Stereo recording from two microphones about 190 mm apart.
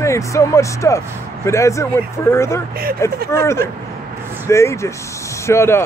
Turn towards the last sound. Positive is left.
turn(degrees=15)  # may be behind; listen again after turning